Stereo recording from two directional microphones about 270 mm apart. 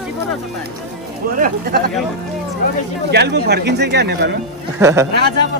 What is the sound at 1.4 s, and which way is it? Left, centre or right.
Speech, right.